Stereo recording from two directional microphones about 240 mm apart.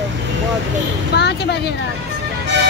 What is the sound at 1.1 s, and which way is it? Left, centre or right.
Speech, left.